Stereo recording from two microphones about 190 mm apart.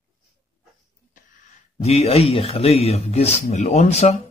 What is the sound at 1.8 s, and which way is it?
A man's voice, 35° left (ahead or behind).